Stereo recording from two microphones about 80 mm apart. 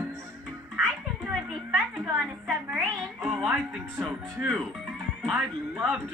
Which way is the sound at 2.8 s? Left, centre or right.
Centre.